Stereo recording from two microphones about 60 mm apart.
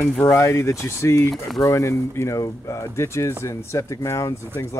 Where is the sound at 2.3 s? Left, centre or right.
Left.